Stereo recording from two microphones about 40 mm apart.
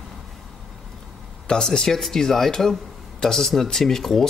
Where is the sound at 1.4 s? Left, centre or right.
Centre.